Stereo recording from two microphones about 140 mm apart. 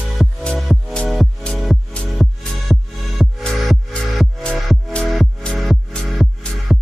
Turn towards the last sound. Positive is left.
turn(degrees=0)  # may be behind; listen again after turning